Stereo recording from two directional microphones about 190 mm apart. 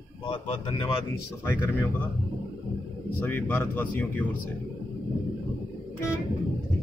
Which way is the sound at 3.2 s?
10° left (ahead or behind).